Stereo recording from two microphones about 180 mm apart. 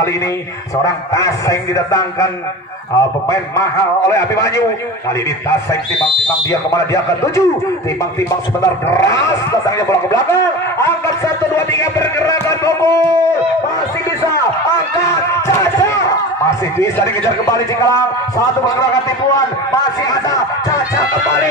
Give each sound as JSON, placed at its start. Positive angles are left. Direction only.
{"t": 0.8, "sound": "a man's voice", "side_deg": 15}
{"t": 6.7, "sound": "a man's voice", "side_deg": 15}
{"t": 8.5, "sound": "a man's voice", "side_deg": 15}
{"t": 16.8, "sound": "a man's voice", "side_deg": 15}